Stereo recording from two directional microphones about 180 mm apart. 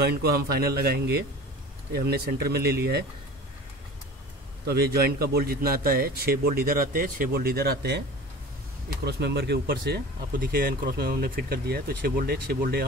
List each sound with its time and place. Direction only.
0.0 s speech: 60° right (ahead or behind)
4.6 s speech: 60° right (ahead or behind)